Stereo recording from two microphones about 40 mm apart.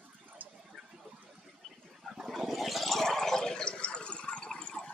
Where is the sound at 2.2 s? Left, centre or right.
Centre; by 4.9 s left.